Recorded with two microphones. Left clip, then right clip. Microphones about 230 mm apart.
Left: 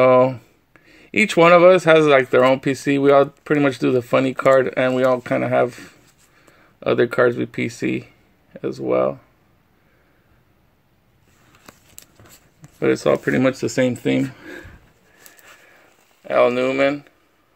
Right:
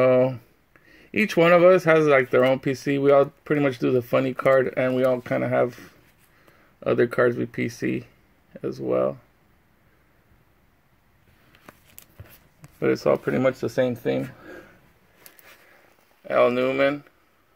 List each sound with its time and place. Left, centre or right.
0.0 s speech: centre
12.7 s speech: centre
13.2 s speech: left
16.3 s speech: centre